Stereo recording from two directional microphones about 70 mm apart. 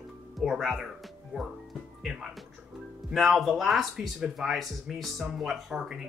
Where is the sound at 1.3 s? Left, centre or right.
Centre.